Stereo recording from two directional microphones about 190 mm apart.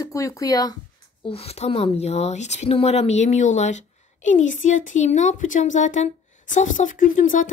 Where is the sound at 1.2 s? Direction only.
30° left (ahead or behind).